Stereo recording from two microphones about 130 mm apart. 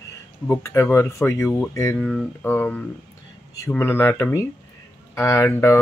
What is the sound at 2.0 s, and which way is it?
Speech, 5° left (ahead or behind).